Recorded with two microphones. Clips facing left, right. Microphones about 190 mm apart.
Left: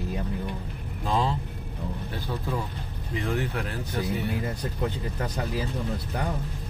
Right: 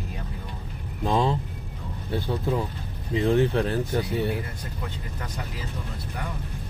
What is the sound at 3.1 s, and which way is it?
Speech, 25° right (ahead or behind).